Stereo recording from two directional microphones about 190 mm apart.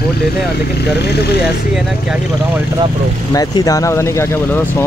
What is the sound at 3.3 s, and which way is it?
Speech, 20° left (ahead or behind).